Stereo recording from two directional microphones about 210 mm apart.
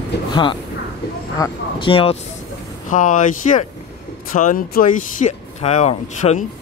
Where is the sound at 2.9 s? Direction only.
40° left (ahead or behind).